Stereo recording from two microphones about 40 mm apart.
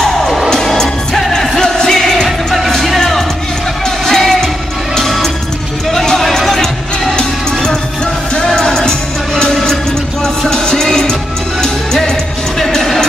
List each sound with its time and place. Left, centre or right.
0.5 s music: centre
2.2 s music: centre
7.1 s music: centre